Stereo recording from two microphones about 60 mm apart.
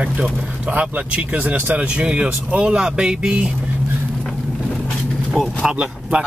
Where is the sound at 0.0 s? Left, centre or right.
Centre.